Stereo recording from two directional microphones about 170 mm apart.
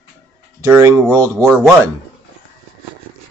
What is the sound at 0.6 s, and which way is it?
Speech, 15° right (ahead or behind).